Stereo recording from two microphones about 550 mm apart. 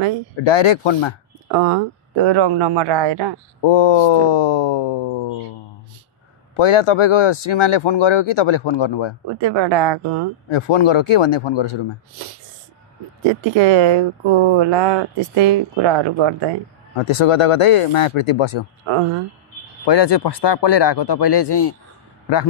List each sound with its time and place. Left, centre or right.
0.5 s speech: left
1.5 s speech: right
3.6 s speech: left
6.5 s speech: left
9.4 s speech: right
10.5 s speech: left
13.3 s speech: right
17.0 s speech: left
18.9 s speech: right
19.9 s speech: left